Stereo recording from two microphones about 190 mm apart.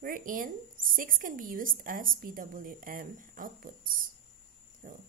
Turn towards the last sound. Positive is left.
turn(degrees=-45)  # may be behind; listen again after turning